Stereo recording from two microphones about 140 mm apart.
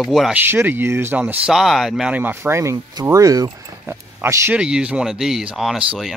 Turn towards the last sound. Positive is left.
turn(degrees=0)  # may be behind; listen again after turning